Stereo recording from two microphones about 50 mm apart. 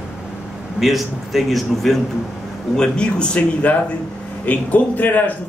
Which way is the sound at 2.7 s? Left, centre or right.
Centre.